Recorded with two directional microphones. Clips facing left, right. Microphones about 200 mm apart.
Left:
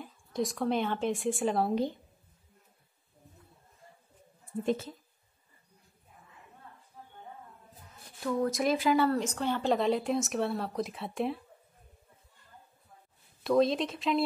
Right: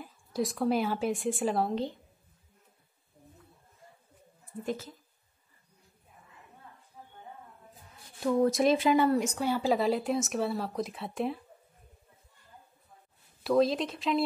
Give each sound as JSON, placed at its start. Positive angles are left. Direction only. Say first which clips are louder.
{"t": 0.0, "sound": "speech", "louder": "right 1 dB", "side_deg": -5}
{"t": 4.6, "sound": "speech", "louder": "left 4 dB", "side_deg": 25}
{"t": 8.2, "sound": "speech", "louder": "right 4 dB", "side_deg": -25}
{"t": 13.4, "sound": "speech", "louder": "even", "side_deg": 0}